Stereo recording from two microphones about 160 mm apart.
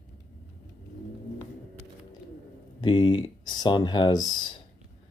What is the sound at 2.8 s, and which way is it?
Speech, 30° left (ahead or behind).